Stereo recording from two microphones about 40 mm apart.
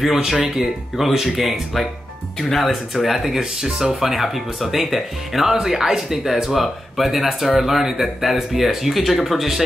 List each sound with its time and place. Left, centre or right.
0.2 s speech: centre